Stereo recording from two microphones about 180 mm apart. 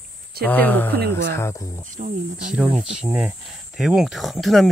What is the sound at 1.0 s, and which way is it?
Speech, 70° right (ahead or behind).